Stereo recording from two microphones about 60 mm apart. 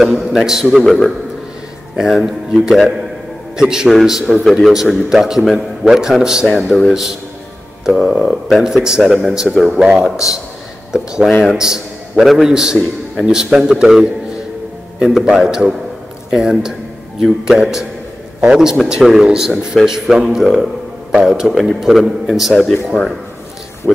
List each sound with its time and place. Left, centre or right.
0.0 s a man's voice: centre
6.4 s speech: centre
6.9 s a man's voice: centre
7.8 s a sound: centre
8.3 s a man's voice: centre
8.6 s a man's voice: centre
9.8 s a man's voice: centre